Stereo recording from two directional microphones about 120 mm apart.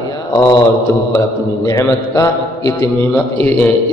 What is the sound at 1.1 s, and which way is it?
A man's voice, 25° left (ahead or behind).